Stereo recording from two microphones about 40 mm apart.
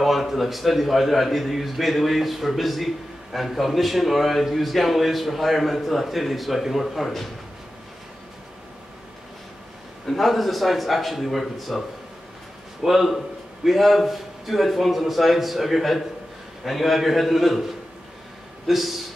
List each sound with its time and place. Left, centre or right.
0.0 s a man's voice: centre
10.0 s a man's voice: centre
12.8 s a man's voice: centre
18.7 s a man's voice: centre